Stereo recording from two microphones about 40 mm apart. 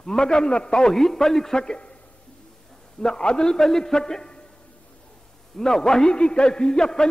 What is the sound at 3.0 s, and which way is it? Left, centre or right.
A man's voice, centre.